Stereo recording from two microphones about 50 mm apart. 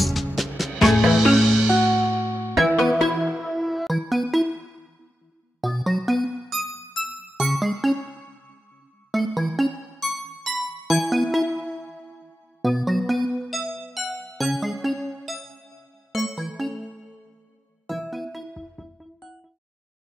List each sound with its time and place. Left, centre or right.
0.0 s music: centre
1.8 s music: right
2.5 s music: centre
5.6 s music: centre
9.1 s music: centre